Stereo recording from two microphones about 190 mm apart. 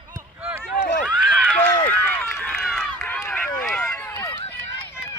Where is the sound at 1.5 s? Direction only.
10° left (ahead or behind).